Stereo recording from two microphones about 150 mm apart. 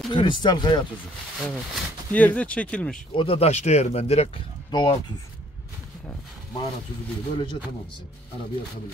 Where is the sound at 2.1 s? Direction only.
10° left (ahead or behind).